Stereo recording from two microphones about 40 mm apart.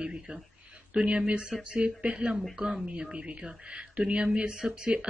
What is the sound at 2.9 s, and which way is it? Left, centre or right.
Speech, right.